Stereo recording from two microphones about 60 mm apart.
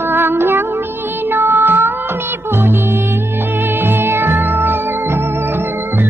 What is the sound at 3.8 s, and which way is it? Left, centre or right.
Music, right.